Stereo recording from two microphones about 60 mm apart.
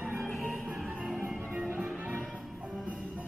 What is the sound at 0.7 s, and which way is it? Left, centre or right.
Music, centre.